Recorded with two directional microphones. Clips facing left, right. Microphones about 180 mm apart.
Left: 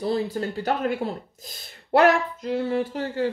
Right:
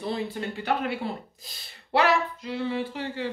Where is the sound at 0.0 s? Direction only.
40° left (ahead or behind).